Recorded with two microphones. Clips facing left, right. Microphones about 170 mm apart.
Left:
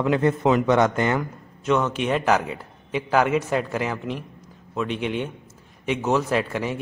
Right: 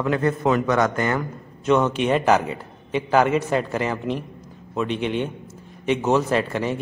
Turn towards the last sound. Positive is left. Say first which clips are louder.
# right 2 dB
turn(degrees=5)  # may be behind; listen again after turning